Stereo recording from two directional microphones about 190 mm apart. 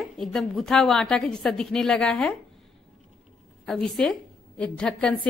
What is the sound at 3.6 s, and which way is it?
A woman's voice, centre (ahead or behind).